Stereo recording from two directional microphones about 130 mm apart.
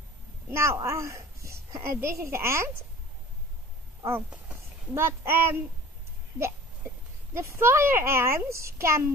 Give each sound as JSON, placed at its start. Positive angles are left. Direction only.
{"t": 0.5, "sound": "a woman's voice", "side_deg": -20}
{"t": 4.9, "sound": "speech", "side_deg": -20}
{"t": 7.3, "sound": "a child's voice", "side_deg": -20}